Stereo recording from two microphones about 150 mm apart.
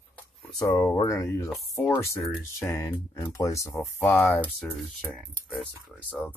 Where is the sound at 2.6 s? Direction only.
20° left (ahead or behind).